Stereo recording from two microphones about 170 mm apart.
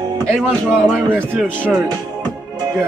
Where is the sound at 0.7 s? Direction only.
5° left (ahead or behind).